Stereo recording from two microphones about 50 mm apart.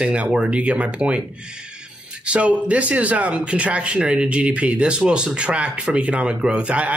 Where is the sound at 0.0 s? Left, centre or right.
Right.